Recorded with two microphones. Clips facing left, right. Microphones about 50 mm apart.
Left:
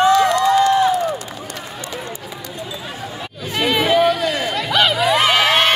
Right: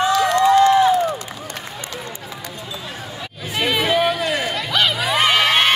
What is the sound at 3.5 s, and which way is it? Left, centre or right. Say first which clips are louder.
Chatter: left 3 dB; centre.